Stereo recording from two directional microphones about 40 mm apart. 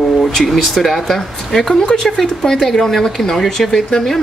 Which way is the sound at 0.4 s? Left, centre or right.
Centre.